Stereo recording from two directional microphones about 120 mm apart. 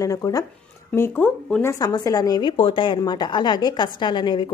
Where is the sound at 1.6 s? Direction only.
30° left (ahead or behind).